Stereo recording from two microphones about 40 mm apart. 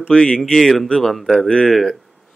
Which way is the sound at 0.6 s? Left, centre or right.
Centre.